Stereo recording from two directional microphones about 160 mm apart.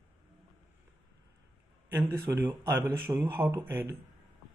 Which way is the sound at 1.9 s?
15° right (ahead or behind).